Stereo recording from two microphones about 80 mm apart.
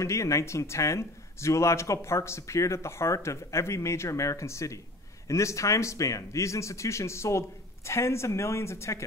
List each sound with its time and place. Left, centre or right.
0.0 s speech: left